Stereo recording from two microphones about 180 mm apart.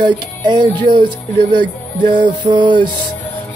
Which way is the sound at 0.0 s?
25° right (ahead or behind).